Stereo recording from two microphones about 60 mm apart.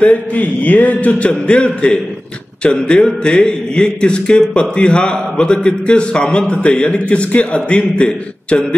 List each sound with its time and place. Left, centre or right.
0.0 s a man's voice: left